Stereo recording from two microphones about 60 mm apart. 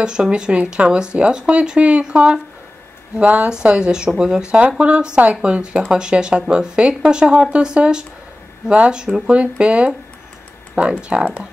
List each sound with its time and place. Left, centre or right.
0.0 s speech: centre